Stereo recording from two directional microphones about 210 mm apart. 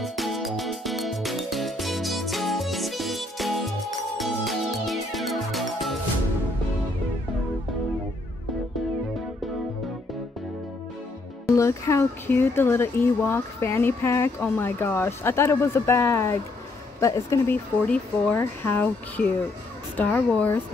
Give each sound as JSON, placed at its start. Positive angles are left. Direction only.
{"t": 0.0, "sound": "music", "side_deg": 0}
{"t": 11.5, "sound": "speech", "side_deg": 15}